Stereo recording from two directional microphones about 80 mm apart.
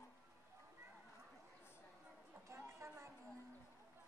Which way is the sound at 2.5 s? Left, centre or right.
Right.